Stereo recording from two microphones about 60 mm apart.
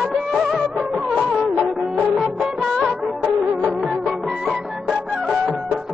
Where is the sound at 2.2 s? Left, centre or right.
Centre.